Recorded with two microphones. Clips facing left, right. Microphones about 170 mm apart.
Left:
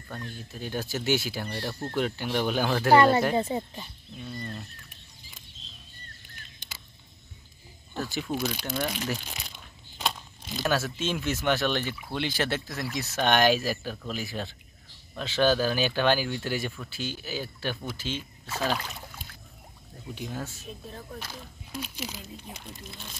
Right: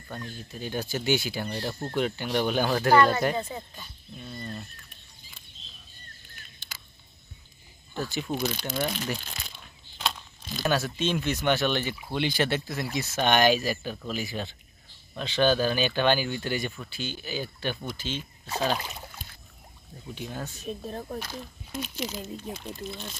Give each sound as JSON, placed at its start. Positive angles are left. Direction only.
{"t": 0.1, "sound": "speech", "side_deg": 0}
{"t": 1.5, "sound": "speech", "side_deg": -15}
{"t": 2.0, "sound": "speech", "side_deg": 0}
{"t": 2.9, "sound": "speech", "side_deg": 30}
{"t": 4.3, "sound": "speech", "side_deg": -5}
{"t": 7.9, "sound": "speech", "side_deg": 0}
{"t": 9.9, "sound": "a sound", "side_deg": 10}
{"t": 10.6, "sound": "speech", "side_deg": 0}
{"t": 18.5, "sound": "speech", "side_deg": -20}
{"t": 20.2, "sound": "speech", "side_deg": 5}
{"t": 20.8, "sound": "speech", "side_deg": -40}
{"t": 21.2, "sound": "speech", "side_deg": 5}